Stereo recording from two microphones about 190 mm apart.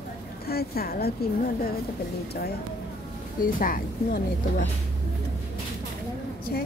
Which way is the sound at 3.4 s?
45° left (ahead or behind).